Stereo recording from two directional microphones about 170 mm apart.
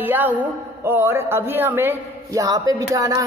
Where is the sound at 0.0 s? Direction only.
10° right (ahead or behind).